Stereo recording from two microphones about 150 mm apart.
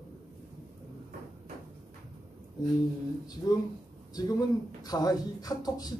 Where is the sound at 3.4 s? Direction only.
25° left (ahead or behind).